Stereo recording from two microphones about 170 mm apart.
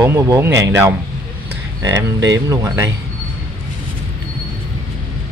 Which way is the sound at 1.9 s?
90° right.